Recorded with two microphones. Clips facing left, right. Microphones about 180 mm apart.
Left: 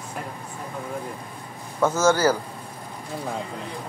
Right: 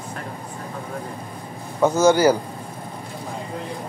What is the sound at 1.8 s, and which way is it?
Speech, 15° right (ahead or behind).